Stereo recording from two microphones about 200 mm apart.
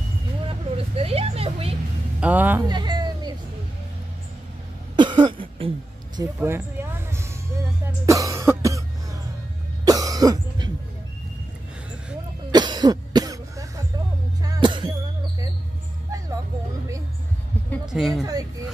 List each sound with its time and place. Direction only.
0.5 s vehicle: 30° right (ahead or behind)
2.1 s speech: 5° right (ahead or behind)
2.6 s a sound: 20° right (ahead or behind)
4.9 s cough: 25° right (ahead or behind)
6.1 s music: 15° right (ahead or behind)
8.1 s cough: 15° right (ahead or behind)
12.4 s cough: 20° right (ahead or behind)
14.4 s music: 20° right (ahead or behind)
17.8 s music: centre (ahead or behind)